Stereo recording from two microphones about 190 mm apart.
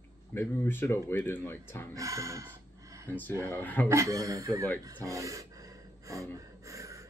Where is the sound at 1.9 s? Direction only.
15° right (ahead or behind).